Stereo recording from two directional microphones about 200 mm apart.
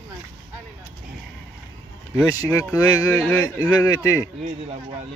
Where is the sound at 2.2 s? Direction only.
15° left (ahead or behind).